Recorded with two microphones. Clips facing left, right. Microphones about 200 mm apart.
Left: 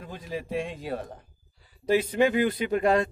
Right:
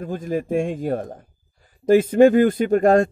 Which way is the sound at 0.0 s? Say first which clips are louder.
Right 10 dB; 50° right (ahead or behind).